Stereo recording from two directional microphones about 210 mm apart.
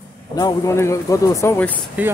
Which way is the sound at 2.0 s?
5° right (ahead or behind).